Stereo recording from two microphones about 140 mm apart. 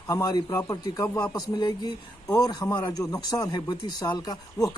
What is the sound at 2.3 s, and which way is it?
Speech, 30° left (ahead or behind).